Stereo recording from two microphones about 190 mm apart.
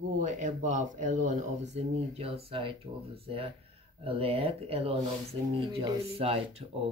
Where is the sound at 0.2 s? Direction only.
40° right (ahead or behind).